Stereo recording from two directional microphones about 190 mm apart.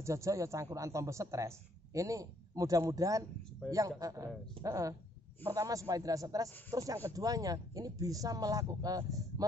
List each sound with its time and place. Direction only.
0.0 s speech: 15° right (ahead or behind)
3.6 s a man's voice: 5° left (ahead or behind)
4.0 s speech: 20° right (ahead or behind)